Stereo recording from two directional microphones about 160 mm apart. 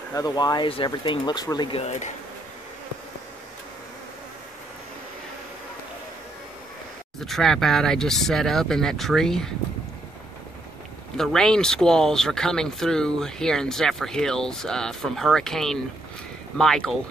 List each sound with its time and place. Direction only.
0.1 s speech: 25° left (ahead or behind)
1.8 s speech: 45° left (ahead or behind)
7.2 s speech: centre (ahead or behind)
11.1 s speech: 5° left (ahead or behind)